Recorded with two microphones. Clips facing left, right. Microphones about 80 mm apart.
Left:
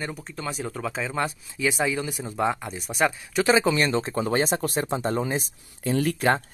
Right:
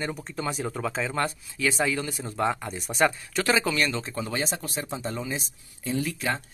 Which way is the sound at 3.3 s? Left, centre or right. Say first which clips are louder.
Left 4 dB; centre.